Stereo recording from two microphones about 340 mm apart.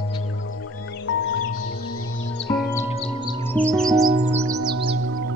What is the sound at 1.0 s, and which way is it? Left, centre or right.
Music, left.